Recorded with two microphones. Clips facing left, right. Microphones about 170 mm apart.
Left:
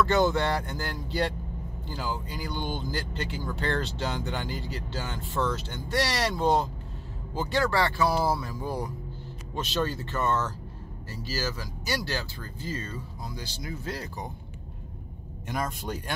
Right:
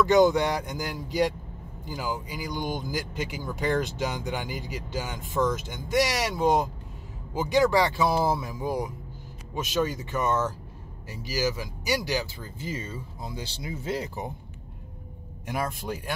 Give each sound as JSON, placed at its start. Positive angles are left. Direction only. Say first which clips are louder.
{"t": 0.0, "sound": "speech", "louder": "right 4 dB", "side_deg": -15}
{"t": 15.4, "sound": "speech", "louder": "right 1 dB", "side_deg": -10}